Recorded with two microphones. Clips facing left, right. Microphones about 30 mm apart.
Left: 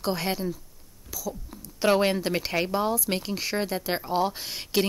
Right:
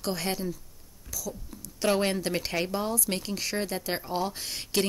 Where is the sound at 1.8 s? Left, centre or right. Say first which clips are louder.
Left 4 dB; centre.